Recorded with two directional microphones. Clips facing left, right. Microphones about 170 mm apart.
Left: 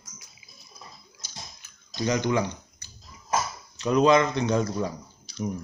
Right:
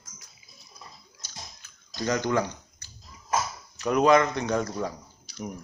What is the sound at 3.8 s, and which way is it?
Speech, 25° left (ahead or behind).